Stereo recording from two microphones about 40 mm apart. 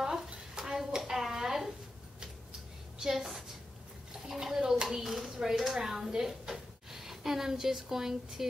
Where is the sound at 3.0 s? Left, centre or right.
Centre.